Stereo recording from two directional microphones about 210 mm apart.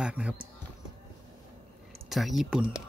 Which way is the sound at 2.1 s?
Centre (ahead or behind).